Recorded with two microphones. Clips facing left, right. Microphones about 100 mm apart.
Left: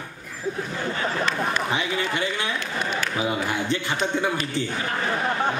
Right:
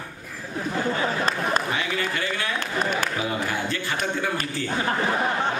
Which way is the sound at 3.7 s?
20° left (ahead or behind).